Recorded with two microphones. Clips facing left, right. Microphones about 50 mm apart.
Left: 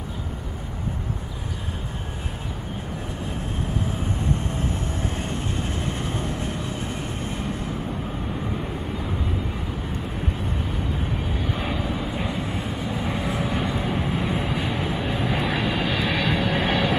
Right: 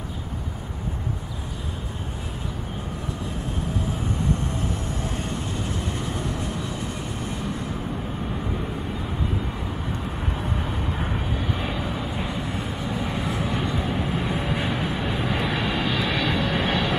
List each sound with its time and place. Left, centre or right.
5.7 s vehicle: left
11.5 s vehicle: centre
13.1 s vehicle: centre
15.0 s vehicle: centre